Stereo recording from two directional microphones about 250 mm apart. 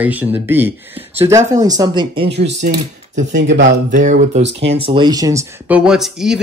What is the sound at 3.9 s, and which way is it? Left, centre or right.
Speech, right.